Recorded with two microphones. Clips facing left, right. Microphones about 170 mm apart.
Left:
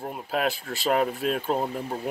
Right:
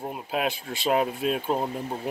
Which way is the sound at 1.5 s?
5° right (ahead or behind).